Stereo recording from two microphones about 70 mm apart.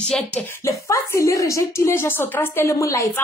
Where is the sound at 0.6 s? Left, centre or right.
Left.